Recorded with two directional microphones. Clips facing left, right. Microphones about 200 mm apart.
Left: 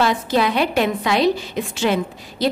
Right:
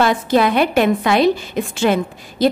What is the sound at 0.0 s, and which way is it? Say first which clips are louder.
A woman's voice: right 3 dB; 55° right (ahead or behind).